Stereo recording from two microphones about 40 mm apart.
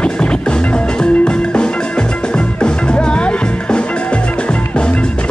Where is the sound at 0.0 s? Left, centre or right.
Left.